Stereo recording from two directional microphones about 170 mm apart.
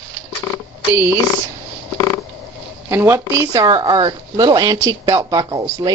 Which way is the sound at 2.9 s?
15° right (ahead or behind).